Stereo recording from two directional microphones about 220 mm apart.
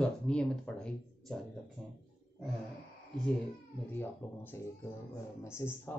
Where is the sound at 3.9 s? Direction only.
10° left (ahead or behind).